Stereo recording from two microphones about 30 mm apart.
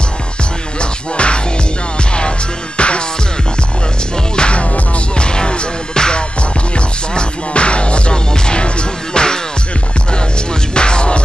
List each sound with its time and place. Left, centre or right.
0.7 s music: left
2.8 s music: left
4.4 s music: left
10.7 s music: left